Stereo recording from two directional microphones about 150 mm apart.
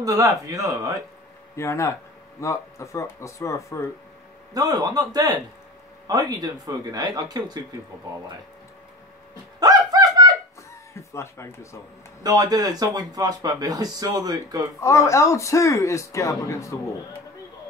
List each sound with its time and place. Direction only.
0.0 s speech: 25° right (ahead or behind)
1.6 s speech: 20° left (ahead or behind)
4.6 s speech: 25° right (ahead or behind)
9.6 s a sound: 25° right (ahead or behind)
11.0 s speech: 20° left (ahead or behind)
12.2 s speech: 25° right (ahead or behind)
14.8 s speech: 20° left (ahead or behind)